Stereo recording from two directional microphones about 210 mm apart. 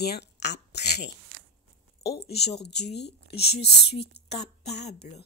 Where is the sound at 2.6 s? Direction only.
50° left (ahead or behind).